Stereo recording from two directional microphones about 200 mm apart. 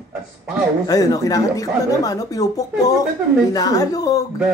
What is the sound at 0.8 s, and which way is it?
Speech, 20° left (ahead or behind).